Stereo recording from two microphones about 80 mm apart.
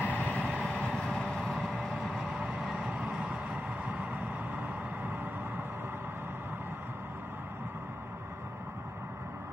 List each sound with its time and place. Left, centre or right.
0.0 s vehicle: left
0.3 s vehicle: centre